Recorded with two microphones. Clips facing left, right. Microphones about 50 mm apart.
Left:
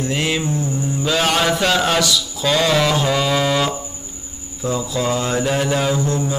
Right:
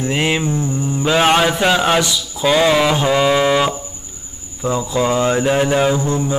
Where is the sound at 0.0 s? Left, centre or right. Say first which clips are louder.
Right 3 dB; right.